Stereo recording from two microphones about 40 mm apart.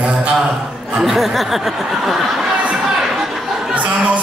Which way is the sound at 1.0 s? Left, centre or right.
Centre.